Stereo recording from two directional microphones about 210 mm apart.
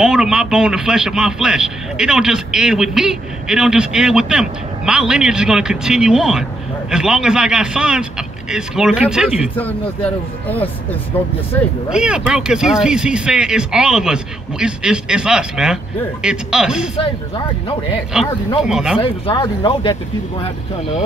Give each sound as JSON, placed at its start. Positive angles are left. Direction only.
{"t": 0.0, "sound": "a man's voice", "side_deg": -5}
{"t": 9.6, "sound": "speech", "side_deg": 10}
{"t": 11.9, "sound": "a man's voice", "side_deg": -5}
{"t": 17.6, "sound": "speech", "side_deg": 25}
{"t": 18.6, "sound": "a man's voice", "side_deg": -5}
{"t": 18.9, "sound": "speech", "side_deg": 20}